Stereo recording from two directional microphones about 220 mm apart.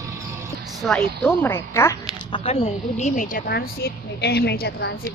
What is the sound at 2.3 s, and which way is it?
A woman's voice, 25° left (ahead or behind).